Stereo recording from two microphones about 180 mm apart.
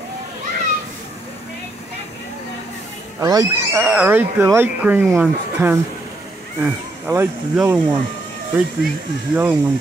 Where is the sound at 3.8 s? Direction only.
10° right (ahead or behind).